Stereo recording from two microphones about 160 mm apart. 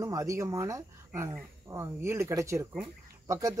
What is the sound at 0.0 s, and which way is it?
Speech, 20° right (ahead or behind).